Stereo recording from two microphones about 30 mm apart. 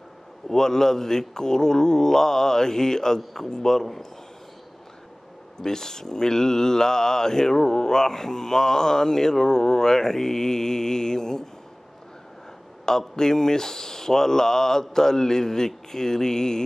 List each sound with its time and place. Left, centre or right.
0.5 s speech: centre
5.6 s speech: centre
13.1 s speech: centre